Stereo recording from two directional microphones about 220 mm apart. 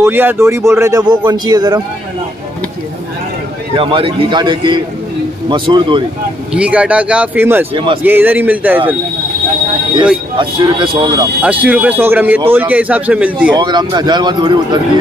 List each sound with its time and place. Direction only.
0.0 s a man's voice: 10° right (ahead or behind)
3.7 s speech: 25° right (ahead or behind)
6.5 s speech: 5° right (ahead or behind)
7.7 s speech: 25° right (ahead or behind)
8.0 s a man's voice: 10° right (ahead or behind)
10.3 s speech: 20° right (ahead or behind)
11.4 s a man's voice: 5° right (ahead or behind)
13.5 s speech: 20° right (ahead or behind)